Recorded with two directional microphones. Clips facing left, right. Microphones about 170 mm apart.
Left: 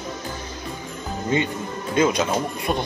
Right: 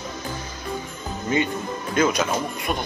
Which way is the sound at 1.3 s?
25° left (ahead or behind).